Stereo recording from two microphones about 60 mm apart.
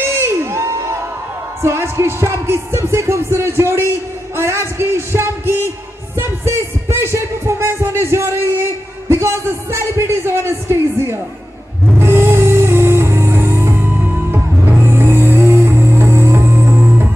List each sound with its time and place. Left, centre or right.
0.0 s crowd: right
1.6 s music: right
14.9 s music: right